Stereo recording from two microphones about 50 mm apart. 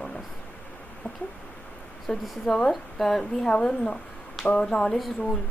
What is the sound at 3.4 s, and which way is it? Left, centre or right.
A woman's voice, centre.